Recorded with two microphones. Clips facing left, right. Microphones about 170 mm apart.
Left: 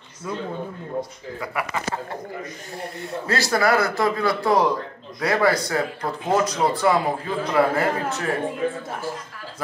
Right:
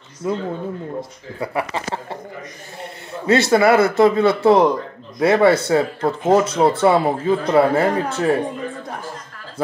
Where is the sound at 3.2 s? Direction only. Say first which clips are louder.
Right 7 dB; 25° right (ahead or behind).